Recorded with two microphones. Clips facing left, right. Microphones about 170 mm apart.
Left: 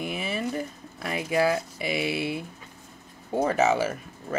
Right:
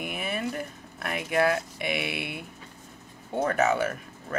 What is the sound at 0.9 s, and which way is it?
Speech, 60° right (ahead or behind).